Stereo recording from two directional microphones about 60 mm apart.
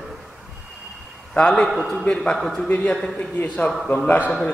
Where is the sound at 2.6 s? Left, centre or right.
Left.